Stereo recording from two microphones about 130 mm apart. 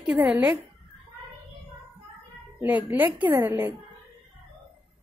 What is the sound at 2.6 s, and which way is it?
A woman's voice, 15° right (ahead or behind).